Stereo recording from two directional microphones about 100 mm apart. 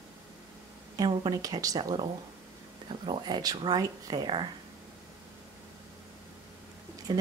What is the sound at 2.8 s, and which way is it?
Speech, 55° right (ahead or behind).